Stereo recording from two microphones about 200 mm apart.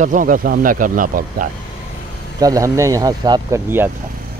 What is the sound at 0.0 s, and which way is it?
Speech, 40° right (ahead or behind).